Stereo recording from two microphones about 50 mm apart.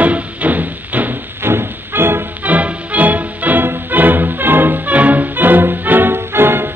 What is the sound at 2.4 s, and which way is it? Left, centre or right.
Music, right.